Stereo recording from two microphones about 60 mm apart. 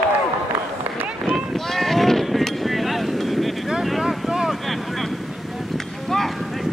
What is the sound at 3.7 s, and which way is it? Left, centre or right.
Vehicle, centre.